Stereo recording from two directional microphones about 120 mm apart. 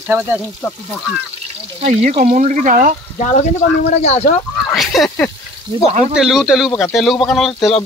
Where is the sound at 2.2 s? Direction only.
90° right.